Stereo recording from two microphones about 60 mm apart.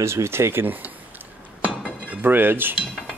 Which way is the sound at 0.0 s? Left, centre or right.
Right.